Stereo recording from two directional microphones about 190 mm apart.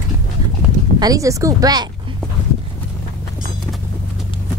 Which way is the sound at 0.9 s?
20° right (ahead or behind).